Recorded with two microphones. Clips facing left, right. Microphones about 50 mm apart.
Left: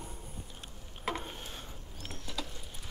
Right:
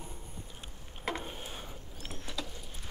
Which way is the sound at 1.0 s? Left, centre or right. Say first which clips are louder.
Even; centre.